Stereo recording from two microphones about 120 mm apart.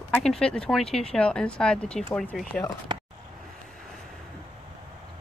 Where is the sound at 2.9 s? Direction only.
40° right (ahead or behind).